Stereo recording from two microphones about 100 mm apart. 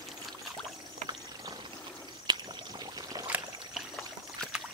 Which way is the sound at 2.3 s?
45° right (ahead or behind).